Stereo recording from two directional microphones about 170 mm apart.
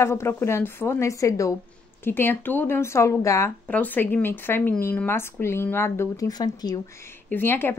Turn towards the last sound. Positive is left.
turn(degrees=15)  # may be behind; listen again after turning